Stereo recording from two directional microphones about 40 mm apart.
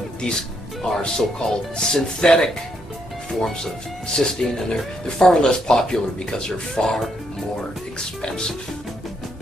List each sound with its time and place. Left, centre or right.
0.2 s speech: centre
4.2 s speech: centre
8.2 s speech: centre